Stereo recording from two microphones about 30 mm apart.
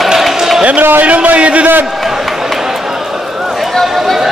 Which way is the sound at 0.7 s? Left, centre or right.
Right.